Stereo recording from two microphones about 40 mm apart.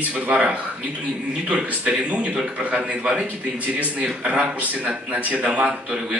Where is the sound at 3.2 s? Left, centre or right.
Right.